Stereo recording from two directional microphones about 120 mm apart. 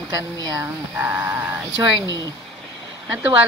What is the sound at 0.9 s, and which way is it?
Speech, 20° right (ahead or behind).